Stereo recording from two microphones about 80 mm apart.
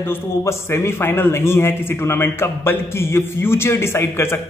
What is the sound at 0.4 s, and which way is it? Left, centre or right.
A man's voice, left.